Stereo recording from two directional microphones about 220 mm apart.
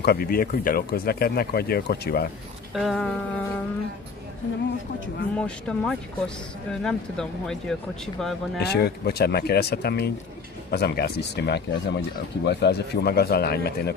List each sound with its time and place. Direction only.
0.0 s speech: 45° left (ahead or behind)
2.7 s speech: centre (ahead or behind)
5.4 s speech: 5° left (ahead or behind)
8.5 s speech: 45° left (ahead or behind)